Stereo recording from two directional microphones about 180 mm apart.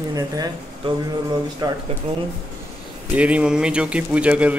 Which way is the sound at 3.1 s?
5° right (ahead or behind).